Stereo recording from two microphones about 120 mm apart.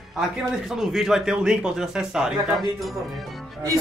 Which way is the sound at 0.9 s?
5° right (ahead or behind).